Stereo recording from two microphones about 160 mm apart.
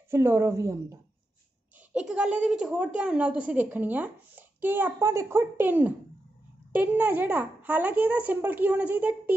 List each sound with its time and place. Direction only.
0.1 s a woman's voice: 15° right (ahead or behind)
2.0 s a woman's voice: 5° right (ahead or behind)